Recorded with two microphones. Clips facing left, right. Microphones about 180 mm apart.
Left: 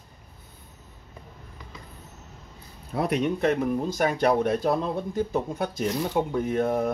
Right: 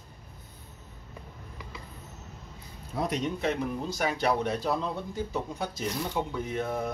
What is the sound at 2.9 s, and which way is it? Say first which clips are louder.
Speech: left 5 dB; 60° left (ahead or behind).